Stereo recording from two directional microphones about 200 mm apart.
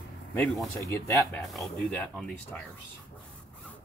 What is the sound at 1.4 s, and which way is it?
Speech, centre (ahead or behind).